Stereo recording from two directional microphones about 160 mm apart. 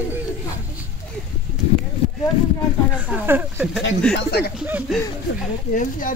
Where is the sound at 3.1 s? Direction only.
10° right (ahead or behind).